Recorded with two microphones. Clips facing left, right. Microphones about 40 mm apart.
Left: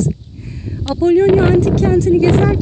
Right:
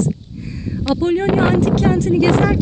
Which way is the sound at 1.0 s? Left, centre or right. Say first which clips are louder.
Left 6 dB; right.